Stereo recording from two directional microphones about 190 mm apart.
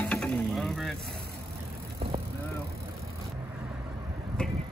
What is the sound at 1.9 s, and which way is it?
Vehicle, 30° right (ahead or behind).